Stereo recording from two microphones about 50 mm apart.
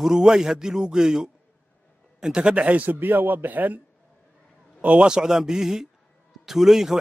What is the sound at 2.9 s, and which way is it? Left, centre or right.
Speech, right.